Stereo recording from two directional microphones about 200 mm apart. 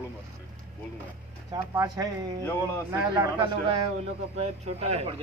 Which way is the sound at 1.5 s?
20° right (ahead or behind).